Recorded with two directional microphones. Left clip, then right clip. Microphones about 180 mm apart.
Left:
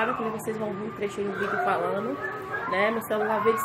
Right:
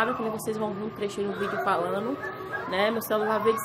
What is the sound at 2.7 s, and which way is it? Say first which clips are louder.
Speech: even; 15° right (ahead or behind).